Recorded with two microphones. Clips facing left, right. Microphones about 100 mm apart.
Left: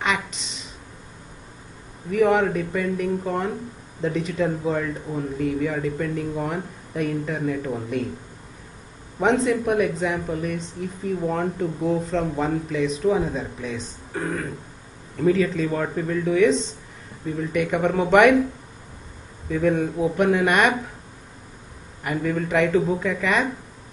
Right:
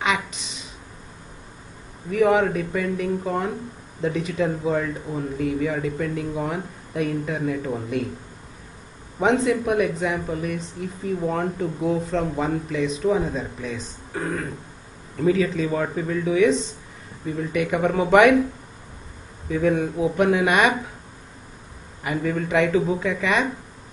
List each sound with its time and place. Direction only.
0.0 s a sound: 5° right (ahead or behind)
2.2 s speech: 5° right (ahead or behind)
9.2 s speech: 5° right (ahead or behind)
19.6 s speech: 5° right (ahead or behind)
22.0 s speech: 5° right (ahead or behind)